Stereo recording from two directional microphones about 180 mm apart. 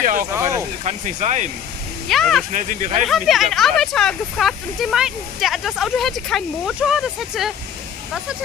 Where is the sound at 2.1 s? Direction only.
Centre (ahead or behind).